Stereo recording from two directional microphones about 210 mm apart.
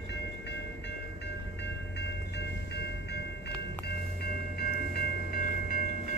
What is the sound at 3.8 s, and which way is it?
Train, 45° left (ahead or behind).